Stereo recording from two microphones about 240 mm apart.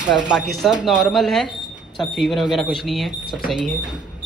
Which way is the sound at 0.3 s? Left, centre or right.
Centre.